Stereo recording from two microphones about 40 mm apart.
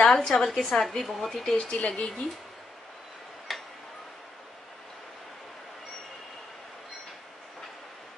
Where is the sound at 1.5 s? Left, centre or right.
Left.